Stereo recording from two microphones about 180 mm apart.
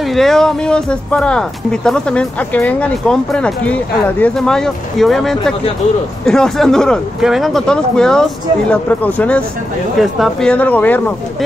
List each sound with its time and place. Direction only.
0.0 s speech: centre (ahead or behind)